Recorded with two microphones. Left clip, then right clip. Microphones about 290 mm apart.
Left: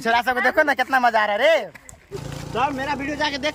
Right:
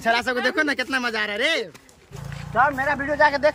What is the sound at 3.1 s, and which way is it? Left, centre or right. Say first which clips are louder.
Speech: right 8 dB; centre.